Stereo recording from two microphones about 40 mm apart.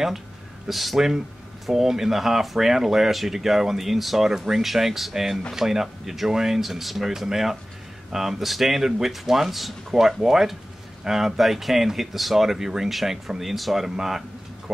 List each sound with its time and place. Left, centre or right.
0.7 s speech: centre